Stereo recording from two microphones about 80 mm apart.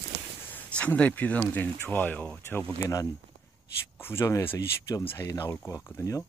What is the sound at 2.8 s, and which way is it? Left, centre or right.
Speech, left.